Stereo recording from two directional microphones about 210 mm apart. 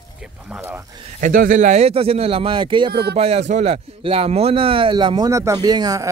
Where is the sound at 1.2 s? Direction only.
40° right (ahead or behind); by 2.9 s 25° right (ahead or behind).